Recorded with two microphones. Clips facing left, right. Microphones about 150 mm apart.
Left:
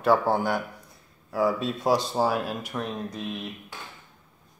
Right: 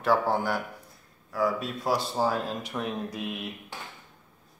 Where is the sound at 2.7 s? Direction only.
5° right (ahead or behind).